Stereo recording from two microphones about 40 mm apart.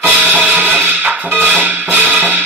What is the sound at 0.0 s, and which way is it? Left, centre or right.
Music, right.